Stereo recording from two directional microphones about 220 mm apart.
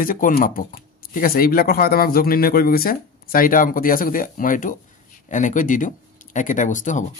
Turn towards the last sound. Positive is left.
turn(degrees=35)  # may be behind; listen again after turning